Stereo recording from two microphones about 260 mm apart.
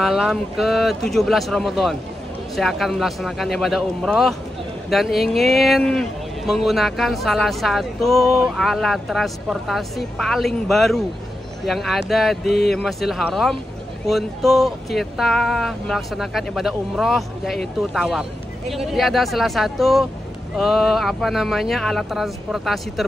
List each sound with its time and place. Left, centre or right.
0.0 s speech: centre